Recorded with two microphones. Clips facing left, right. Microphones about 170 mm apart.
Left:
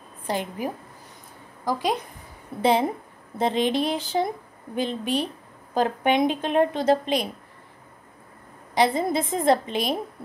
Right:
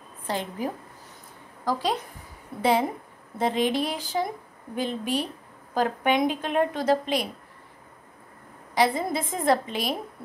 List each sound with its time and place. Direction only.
0.3 s a woman's voice: 15° left (ahead or behind)
8.7 s a woman's voice: 20° left (ahead or behind)